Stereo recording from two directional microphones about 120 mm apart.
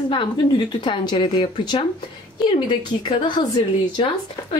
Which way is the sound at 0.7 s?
40° left (ahead or behind).